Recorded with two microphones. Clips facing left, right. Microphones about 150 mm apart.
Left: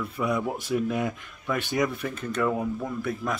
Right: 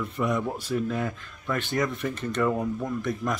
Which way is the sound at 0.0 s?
5° left (ahead or behind).